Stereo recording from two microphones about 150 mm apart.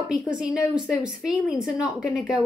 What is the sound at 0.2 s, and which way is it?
A woman's voice, 5° right (ahead or behind).